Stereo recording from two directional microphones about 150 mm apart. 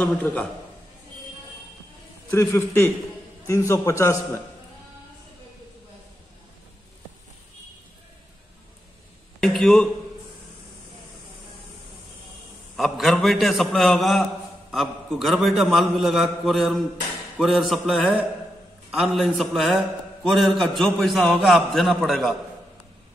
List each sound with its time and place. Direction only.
0.0 s a man's voice: 10° left (ahead or behind)
2.3 s a man's voice: 15° left (ahead or behind)
9.4 s a man's voice: 5° left (ahead or behind)
12.7 s a man's voice: centre (ahead or behind)